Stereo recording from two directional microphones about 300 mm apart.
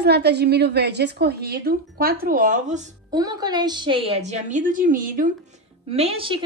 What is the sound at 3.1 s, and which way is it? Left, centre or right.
A woman's voice, centre.